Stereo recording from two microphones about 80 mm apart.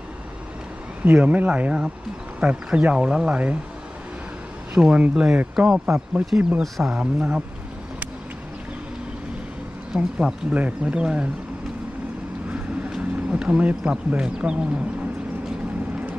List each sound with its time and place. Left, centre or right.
1.0 s speech: centre
4.7 s speech: centre
6.6 s speech: centre
7.0 s speech: centre
9.9 s speech: centre
12.4 s vehicle: centre